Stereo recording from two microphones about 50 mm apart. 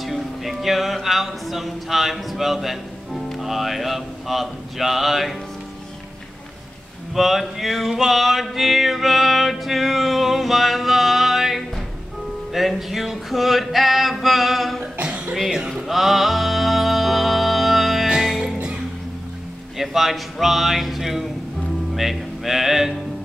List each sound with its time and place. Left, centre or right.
0.0 s speech: centre
7.2 s music: centre
15.0 s cough: right
15.9 s music: centre
18.4 s music: right
19.8 s music: centre
21.9 s speech: centre